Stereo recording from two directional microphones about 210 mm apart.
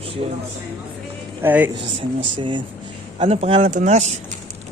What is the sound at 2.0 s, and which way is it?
Speech, 25° right (ahead or behind).